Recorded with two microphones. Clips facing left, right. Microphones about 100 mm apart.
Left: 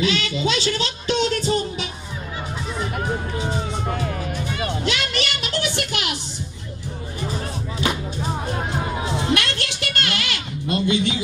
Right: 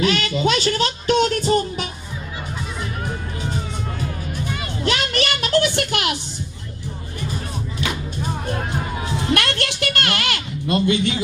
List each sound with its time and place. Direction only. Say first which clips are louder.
0.0 s speech: right 3 dB; 50° right (ahead or behind)
3.8 s music: left 3 dB; 55° left (ahead or behind)
4.8 s a sound: right 3 dB; 45° right (ahead or behind)
8.5 s music: even; 15° left (ahead or behind)
9.3 s speech: right 2 dB; 50° right (ahead or behind)